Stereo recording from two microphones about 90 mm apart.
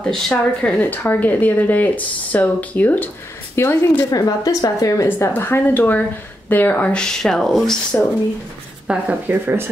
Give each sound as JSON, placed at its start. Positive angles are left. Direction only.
{"t": 0.0, "sound": "a woman's voice", "side_deg": 10}
{"t": 4.1, "sound": "speech", "side_deg": 40}
{"t": 5.3, "sound": "a woman's voice", "side_deg": 25}
{"t": 8.8, "sound": "speech", "side_deg": -10}
{"t": 9.3, "sound": "speech", "side_deg": -25}